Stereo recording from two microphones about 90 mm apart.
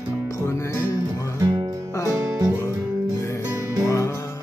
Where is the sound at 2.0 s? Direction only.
40° right (ahead or behind).